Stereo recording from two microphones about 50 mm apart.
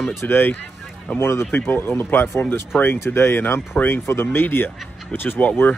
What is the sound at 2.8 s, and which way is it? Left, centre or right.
Speech, left.